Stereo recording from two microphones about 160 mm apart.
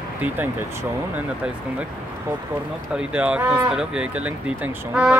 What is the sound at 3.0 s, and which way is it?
Speech, 5° right (ahead or behind).